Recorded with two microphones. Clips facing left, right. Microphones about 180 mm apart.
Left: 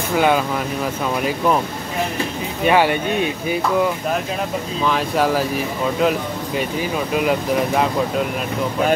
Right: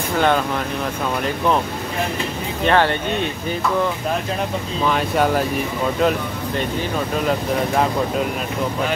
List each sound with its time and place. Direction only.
2.6 s speech: 10° left (ahead or behind)
4.8 s speech: centre (ahead or behind)
7.2 s speech: 5° left (ahead or behind)